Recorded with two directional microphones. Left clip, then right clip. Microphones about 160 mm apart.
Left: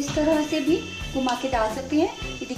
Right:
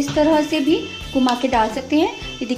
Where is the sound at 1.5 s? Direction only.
70° right (ahead or behind).